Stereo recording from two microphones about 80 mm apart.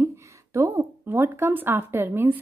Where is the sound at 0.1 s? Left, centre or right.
Right.